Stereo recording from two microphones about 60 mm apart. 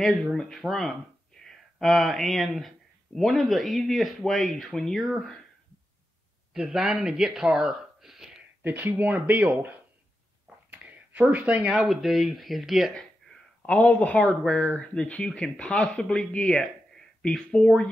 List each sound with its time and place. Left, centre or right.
0.0 s speech: centre
6.5 s a man's voice: centre
8.6 s speech: right
10.7 s a sound: right
11.2 s speech: right
11.7 s speech: centre
13.6 s speech: centre